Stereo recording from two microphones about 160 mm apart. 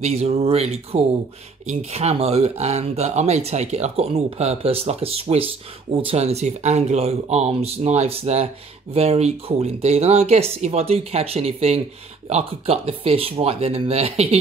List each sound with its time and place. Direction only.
0.0 s speech: 40° right (ahead or behind)